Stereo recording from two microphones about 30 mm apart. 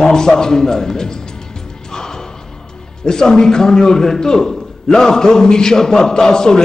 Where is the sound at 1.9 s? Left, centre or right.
Centre.